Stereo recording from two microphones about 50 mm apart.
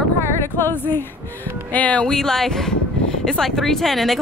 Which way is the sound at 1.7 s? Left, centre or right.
Left.